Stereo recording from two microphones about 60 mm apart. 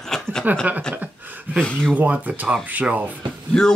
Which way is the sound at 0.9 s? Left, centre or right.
Right.